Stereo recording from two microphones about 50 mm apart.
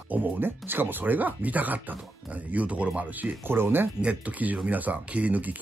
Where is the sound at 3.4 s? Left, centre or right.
Right.